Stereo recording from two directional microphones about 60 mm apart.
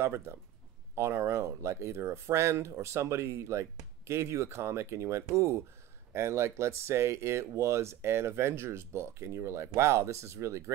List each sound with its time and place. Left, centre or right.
0.0 s speech: right
6.1 s speech: right